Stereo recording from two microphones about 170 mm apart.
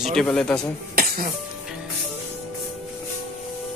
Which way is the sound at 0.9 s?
65° right (ahead or behind).